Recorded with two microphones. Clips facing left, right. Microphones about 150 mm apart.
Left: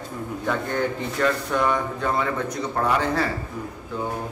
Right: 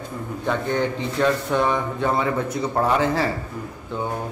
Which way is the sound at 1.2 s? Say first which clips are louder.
Right 2 dB; 25° right (ahead or behind).